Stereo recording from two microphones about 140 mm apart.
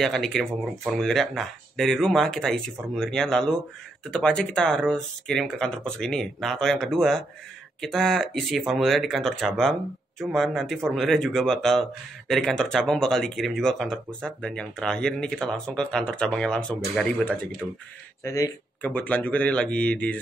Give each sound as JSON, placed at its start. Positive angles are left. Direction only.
{"t": 0.0, "sound": "speech", "side_deg": 5}
{"t": 18.2, "sound": "speech", "side_deg": 20}
{"t": 18.8, "sound": "speech", "side_deg": 10}